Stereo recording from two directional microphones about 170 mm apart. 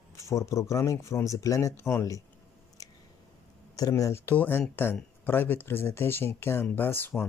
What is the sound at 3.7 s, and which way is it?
Speech, 20° left (ahead or behind).